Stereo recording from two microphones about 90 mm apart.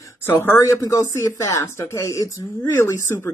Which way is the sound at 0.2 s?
25° left (ahead or behind).